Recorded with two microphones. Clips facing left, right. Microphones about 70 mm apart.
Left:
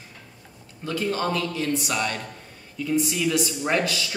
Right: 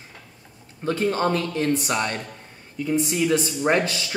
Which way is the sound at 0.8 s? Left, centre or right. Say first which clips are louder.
Right 4 dB; right.